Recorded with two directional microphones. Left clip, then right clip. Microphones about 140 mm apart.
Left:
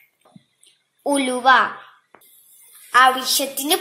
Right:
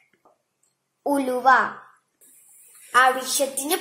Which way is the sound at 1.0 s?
20° left (ahead or behind).